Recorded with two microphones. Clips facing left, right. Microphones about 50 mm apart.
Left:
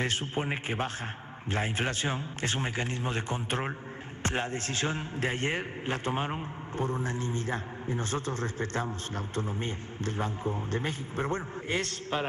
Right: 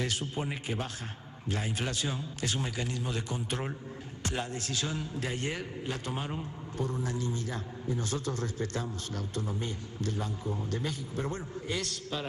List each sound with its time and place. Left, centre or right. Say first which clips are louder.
0.0 s a man's voice: left 3 dB; left